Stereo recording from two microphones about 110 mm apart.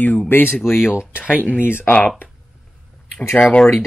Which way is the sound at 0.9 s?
10° right (ahead or behind).